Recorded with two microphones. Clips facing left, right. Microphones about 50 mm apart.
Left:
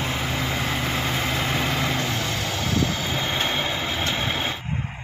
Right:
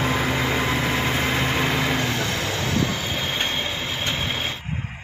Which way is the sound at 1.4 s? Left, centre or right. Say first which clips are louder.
Right 2 dB; right.